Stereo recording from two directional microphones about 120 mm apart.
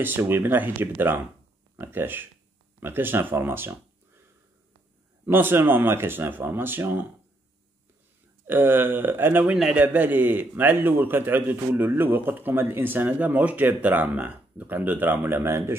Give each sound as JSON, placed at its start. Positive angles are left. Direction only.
{"t": 0.0, "sound": "a man's voice", "side_deg": -15}
{"t": 5.2, "sound": "a man's voice", "side_deg": -15}
{"t": 8.5, "sound": "a man's voice", "side_deg": -15}